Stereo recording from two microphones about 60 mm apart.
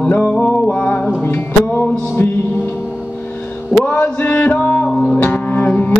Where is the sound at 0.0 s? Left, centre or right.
Left.